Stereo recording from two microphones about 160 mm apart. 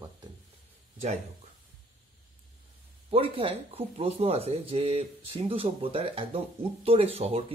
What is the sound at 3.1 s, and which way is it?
Speech, 35° right (ahead or behind).